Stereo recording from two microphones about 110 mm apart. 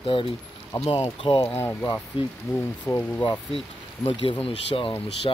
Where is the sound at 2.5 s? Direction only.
25° left (ahead or behind).